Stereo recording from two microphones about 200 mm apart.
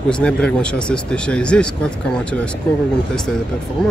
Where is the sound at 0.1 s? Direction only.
5° left (ahead or behind).